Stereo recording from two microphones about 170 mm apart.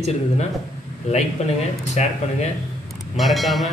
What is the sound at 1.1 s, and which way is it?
A man's voice, 40° left (ahead or behind).